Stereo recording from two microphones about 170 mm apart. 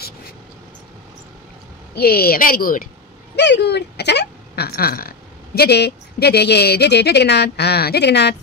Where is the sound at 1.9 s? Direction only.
65° left (ahead or behind).